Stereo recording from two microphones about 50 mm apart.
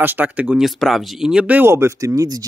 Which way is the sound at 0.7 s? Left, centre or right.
Centre.